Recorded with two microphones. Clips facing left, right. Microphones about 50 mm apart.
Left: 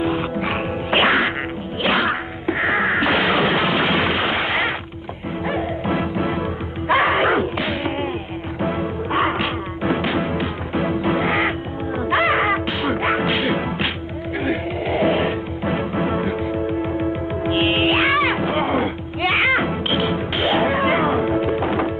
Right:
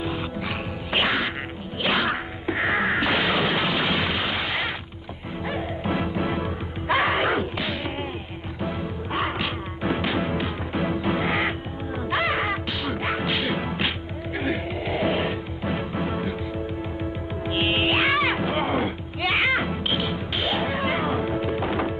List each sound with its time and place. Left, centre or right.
0.0 s music: left
1.8 s music: centre
5.5 s music: centre
17.5 s music: centre